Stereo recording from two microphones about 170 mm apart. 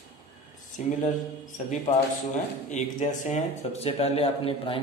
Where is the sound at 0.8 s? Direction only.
50° left (ahead or behind).